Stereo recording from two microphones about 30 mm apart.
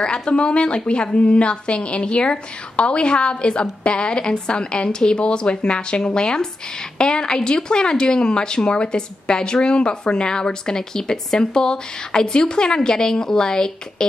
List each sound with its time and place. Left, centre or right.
0.0 s a woman's voice: left